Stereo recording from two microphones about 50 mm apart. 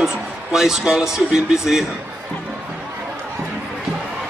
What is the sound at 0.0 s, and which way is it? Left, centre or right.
A man's voice, centre.